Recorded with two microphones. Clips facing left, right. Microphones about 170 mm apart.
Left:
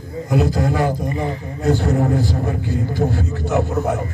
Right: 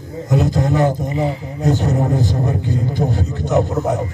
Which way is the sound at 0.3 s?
20° right (ahead or behind).